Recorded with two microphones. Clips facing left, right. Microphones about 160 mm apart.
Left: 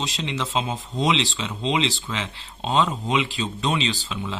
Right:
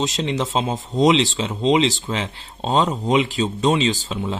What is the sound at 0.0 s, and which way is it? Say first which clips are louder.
Speech: right 6 dB; 45° right (ahead or behind).